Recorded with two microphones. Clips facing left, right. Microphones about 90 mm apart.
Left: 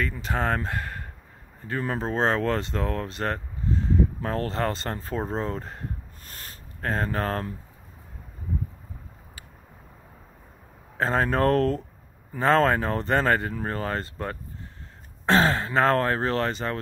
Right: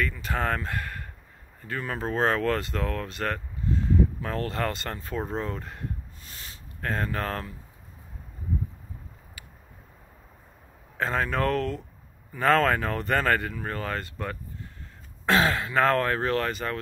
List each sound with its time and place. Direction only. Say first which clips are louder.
0.0 s speech: left 1 dB; 25° left (ahead or behind)
6.2 s a sound: left 3 dB; 45° left (ahead or behind)
6.8 s speech: left 2 dB; 30° left (ahead or behind)
11.0 s speech: left 3 dB; 35° left (ahead or behind)
12.4 s speech: left 1 dB; 25° left (ahead or behind)